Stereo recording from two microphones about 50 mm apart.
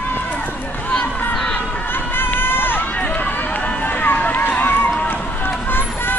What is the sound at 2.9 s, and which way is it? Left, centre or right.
Run, left.